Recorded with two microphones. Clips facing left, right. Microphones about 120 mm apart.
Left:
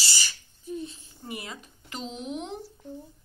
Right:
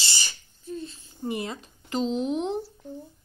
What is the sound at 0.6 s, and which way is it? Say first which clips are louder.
Speech: even; 15° left (ahead or behind).